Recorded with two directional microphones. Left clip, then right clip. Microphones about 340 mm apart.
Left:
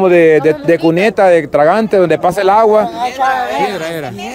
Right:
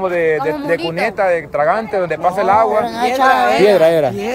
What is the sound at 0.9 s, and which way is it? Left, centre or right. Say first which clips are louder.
Speech: left 6 dB; left.